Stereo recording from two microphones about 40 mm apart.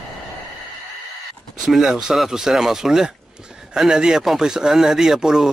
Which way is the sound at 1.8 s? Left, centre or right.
Centre.